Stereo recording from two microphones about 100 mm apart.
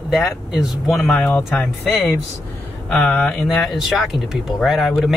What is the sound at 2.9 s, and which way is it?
Speech, 10° left (ahead or behind).